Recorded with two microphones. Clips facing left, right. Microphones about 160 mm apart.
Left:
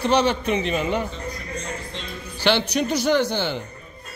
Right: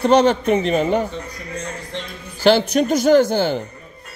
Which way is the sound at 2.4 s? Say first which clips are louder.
Right 6 dB; 45° right (ahead or behind).